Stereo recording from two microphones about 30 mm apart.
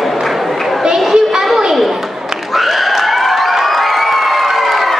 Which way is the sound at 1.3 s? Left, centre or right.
Centre.